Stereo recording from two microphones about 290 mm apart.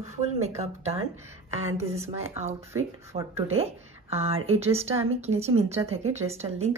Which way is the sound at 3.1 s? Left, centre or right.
Right.